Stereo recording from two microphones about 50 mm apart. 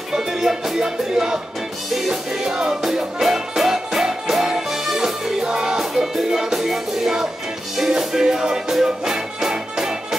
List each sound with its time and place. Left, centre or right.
0.1 s music: centre